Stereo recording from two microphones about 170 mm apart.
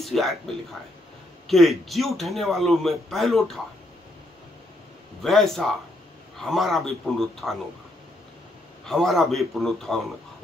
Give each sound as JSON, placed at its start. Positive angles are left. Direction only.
{"t": 0.0, "sound": "a man's voice", "side_deg": 0}
{"t": 1.5, "sound": "a man's voice", "side_deg": 0}
{"t": 5.2, "sound": "a man's voice", "side_deg": 0}
{"t": 8.8, "sound": "a man's voice", "side_deg": 0}